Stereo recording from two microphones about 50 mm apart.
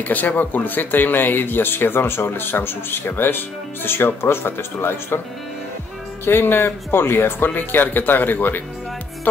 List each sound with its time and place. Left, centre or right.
0.0 s speech: left
6.2 s speech: left